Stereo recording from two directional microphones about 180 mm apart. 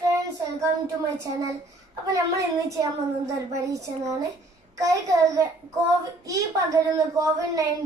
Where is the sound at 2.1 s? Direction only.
20° right (ahead or behind).